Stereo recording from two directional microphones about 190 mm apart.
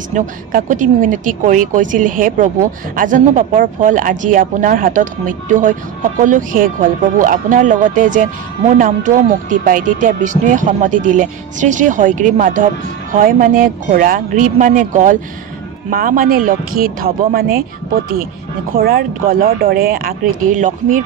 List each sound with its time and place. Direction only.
0.1 s speech: 45° right (ahead or behind)
18.7 s speech: 50° right (ahead or behind)